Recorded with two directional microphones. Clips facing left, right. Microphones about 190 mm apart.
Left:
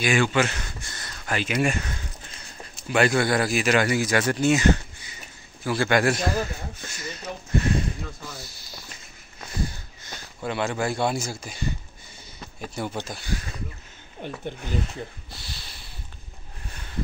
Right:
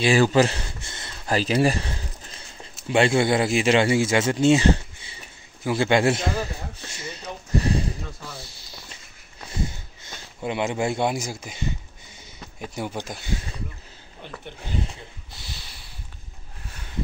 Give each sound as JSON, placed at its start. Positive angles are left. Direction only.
{"t": 0.0, "sound": "a sound", "side_deg": -35}
{"t": 2.9, "sound": "a man's voice", "side_deg": -25}
{"t": 10.4, "sound": "speech", "side_deg": -20}